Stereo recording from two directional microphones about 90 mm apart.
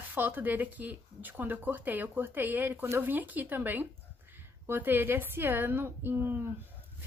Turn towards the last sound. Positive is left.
turn(degrees=-25)  # may be behind; listen again after turning